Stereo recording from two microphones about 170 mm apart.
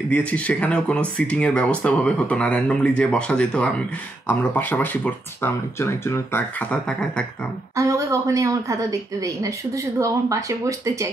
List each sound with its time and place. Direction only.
0.1 s speech: 10° left (ahead or behind)
7.7 s speech: 20° right (ahead or behind)